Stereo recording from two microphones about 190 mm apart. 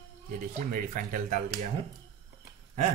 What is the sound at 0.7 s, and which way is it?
Speech, 45° right (ahead or behind).